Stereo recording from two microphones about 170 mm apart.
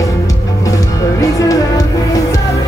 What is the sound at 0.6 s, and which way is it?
Music, 20° left (ahead or behind).